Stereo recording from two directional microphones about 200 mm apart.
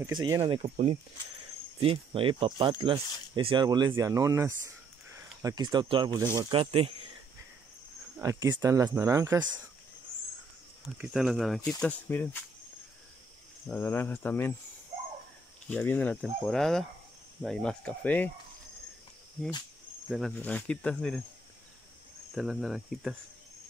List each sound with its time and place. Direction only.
0.2 s speech: 20° right (ahead or behind)
1.8 s speech: 25° right (ahead or behind)
8.2 s speech: 15° right (ahead or behind)
11.0 s speech: centre (ahead or behind)
13.7 s speech: 10° left (ahead or behind)
15.7 s speech: 10° left (ahead or behind)
20.1 s speech: centre (ahead or behind)
22.3 s speech: centre (ahead or behind)